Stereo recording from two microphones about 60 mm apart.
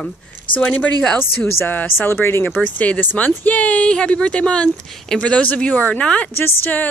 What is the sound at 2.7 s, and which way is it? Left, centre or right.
Speech, left.